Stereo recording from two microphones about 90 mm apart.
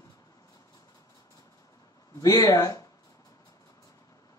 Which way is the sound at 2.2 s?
40° left (ahead or behind).